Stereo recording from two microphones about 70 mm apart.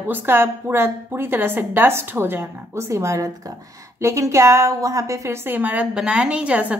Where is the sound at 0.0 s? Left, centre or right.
Right.